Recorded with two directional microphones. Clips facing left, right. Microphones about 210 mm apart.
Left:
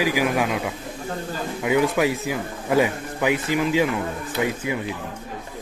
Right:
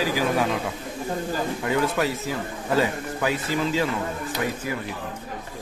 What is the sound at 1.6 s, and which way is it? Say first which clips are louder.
Speech: left 5 dB; 10° left (ahead or behind).